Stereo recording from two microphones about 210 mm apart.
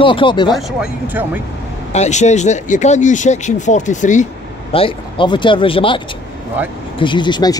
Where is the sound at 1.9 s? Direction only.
35° left (ahead or behind).